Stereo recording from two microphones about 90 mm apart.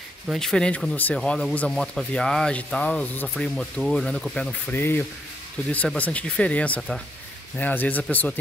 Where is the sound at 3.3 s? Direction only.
5° left (ahead or behind).